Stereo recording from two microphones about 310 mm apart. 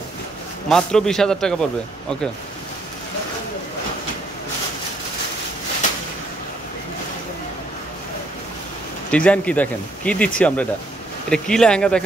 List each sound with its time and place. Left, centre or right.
0.7 s speech: centre
9.1 s speech: centre